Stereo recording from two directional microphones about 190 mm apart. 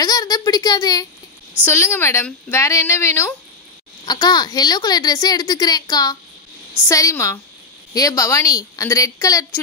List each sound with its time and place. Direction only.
0.0 s a woman's voice: 20° left (ahead or behind)